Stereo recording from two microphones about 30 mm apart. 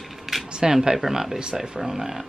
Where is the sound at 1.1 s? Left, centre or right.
Centre.